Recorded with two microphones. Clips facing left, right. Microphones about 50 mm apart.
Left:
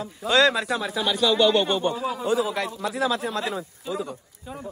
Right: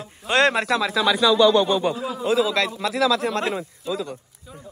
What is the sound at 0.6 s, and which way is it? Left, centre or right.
Speech, right.